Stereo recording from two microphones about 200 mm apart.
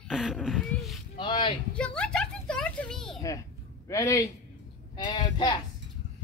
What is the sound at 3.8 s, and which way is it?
A man's voice, 15° left (ahead or behind).